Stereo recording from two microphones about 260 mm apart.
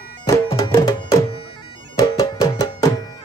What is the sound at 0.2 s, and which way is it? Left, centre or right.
Music, centre.